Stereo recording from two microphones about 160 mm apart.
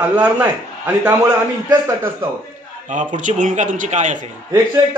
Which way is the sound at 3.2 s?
50° right (ahead or behind).